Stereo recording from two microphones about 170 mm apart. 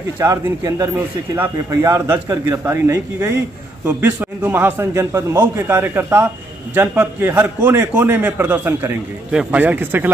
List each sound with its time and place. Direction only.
0.2 s a man's voice: 20° right (ahead or behind)